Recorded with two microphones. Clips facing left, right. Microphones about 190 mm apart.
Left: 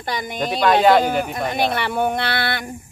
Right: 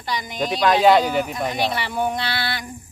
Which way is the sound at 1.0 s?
55° left (ahead or behind).